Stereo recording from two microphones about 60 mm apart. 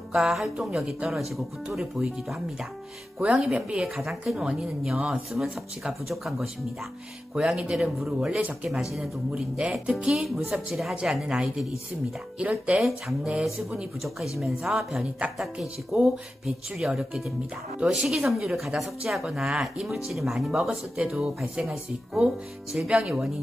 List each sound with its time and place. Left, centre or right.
0.1 s speech: centre
3.4 s speech: centre
4.0 s speech: centre
9.3 s speech: centre
12.4 s speech: centre
12.8 s speech: centre
21.0 s speech: centre
21.4 s speech: centre